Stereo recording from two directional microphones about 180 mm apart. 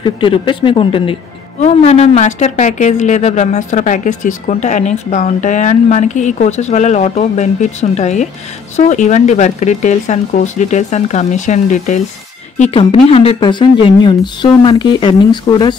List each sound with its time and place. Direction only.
0.0 s a woman's voice: 30° left (ahead or behind)